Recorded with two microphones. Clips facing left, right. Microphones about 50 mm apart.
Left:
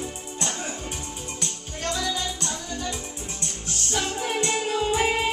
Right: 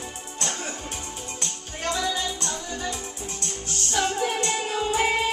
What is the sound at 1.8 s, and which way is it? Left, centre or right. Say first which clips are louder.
Music: right 1 dB; centre.